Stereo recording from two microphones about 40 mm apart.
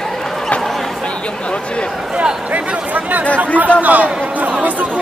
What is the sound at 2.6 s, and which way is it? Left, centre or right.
A man's voice, right.